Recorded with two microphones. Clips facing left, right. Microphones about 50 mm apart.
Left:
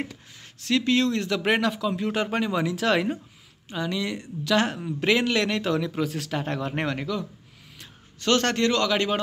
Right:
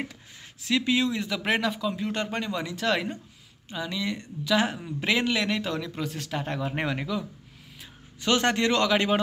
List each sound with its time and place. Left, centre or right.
0.0 s speech: centre